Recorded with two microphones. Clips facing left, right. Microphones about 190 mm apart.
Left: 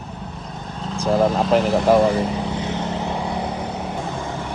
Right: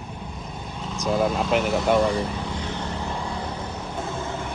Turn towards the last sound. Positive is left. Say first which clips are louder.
# left 6 dB
turn(degrees=15)  # may be behind; listen again after turning